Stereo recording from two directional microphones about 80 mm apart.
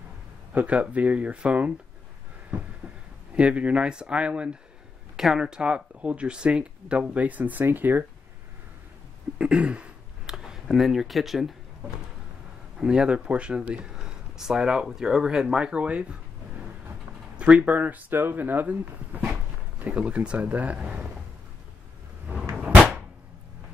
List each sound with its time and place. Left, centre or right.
0.5 s speech: centre
3.3 s speech: centre
9.4 s speech: centre
12.7 s speech: centre
17.4 s speech: centre
19.8 s speech: centre